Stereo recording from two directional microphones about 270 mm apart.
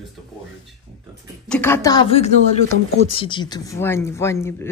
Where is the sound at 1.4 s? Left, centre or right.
Centre.